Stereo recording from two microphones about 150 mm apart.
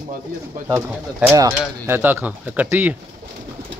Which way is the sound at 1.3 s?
20° right (ahead or behind).